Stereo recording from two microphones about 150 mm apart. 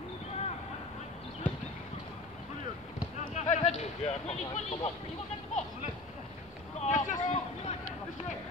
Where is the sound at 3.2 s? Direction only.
50° left (ahead or behind).